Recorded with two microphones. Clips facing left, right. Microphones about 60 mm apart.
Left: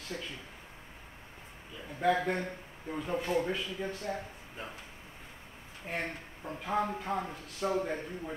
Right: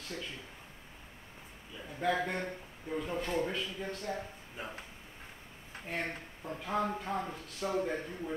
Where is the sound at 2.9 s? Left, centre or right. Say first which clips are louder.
Left 2 dB; centre.